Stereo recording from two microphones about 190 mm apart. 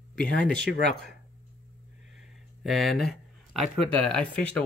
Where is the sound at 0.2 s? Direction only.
5° left (ahead or behind).